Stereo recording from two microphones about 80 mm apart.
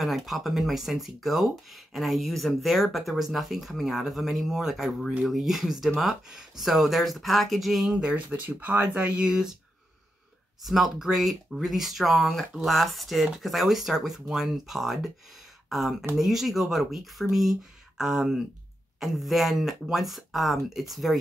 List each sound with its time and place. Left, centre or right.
0.0 s speech: centre
7.9 s speech: centre
10.6 s speech: centre